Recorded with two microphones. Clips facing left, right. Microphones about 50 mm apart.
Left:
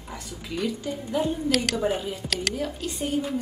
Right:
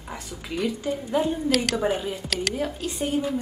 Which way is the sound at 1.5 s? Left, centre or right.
Centre.